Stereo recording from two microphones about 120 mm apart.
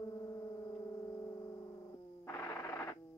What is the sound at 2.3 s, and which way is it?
Music, 20° left (ahead or behind).